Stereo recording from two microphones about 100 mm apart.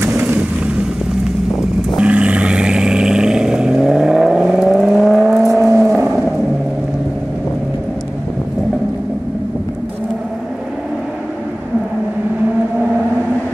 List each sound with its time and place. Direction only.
0.0 s vehicle: 25° right (ahead or behind)
2.0 s vehicle: 10° right (ahead or behind)
5.6 s vehicle: 30° right (ahead or behind)